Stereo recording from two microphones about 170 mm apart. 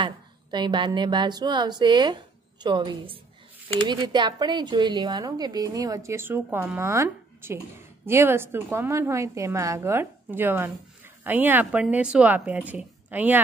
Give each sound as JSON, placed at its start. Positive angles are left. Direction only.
{"t": 0.0, "sound": "a woman's voice", "side_deg": -25}